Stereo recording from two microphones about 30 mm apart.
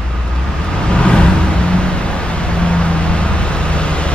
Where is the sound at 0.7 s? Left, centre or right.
Left.